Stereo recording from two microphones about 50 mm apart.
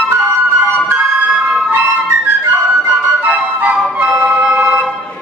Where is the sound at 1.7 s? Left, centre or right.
Right.